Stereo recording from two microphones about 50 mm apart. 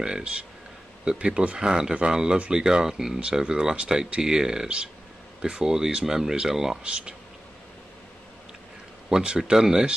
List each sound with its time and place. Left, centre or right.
0.0 s speech: centre
6.8 s speech: right
9.1 s speech: centre